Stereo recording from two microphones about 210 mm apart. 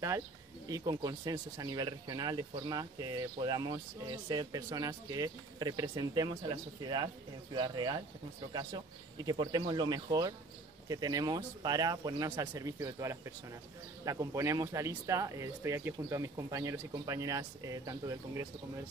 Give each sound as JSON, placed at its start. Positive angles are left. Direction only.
{"t": 0.7, "sound": "speech", "side_deg": -20}